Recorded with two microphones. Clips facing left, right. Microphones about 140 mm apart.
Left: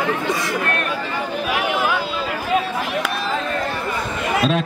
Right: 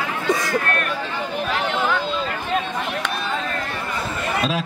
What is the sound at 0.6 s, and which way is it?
Chatter, 20° left (ahead or behind).